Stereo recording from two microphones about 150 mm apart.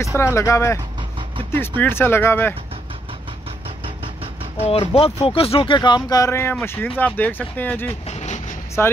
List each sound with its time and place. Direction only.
0.1 s speech: 20° left (ahead or behind)
1.8 s speech: 15° left (ahead or behind)
3.8 s vehicle: 35° right (ahead or behind)
4.6 s speech: 40° left (ahead or behind); by 7.9 s 10° left (ahead or behind)
8.1 s vehicle: 50° left (ahead or behind)
8.8 s speech: 15° left (ahead or behind)